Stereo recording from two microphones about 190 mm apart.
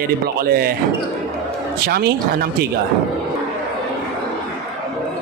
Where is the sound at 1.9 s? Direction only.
55° right (ahead or behind).